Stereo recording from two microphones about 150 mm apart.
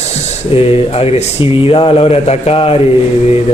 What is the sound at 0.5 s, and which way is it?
Speech, 40° left (ahead or behind).